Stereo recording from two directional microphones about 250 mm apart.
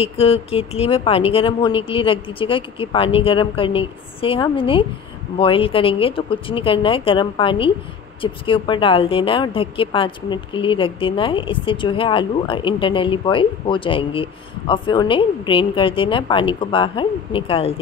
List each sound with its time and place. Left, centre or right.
0.0 s a woman's voice: left